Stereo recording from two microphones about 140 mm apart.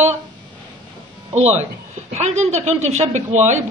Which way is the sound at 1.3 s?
50° right (ahead or behind).